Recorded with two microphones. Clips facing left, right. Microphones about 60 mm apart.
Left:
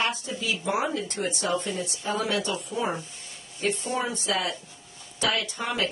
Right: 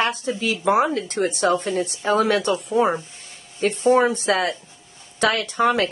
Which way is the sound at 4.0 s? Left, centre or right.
Right.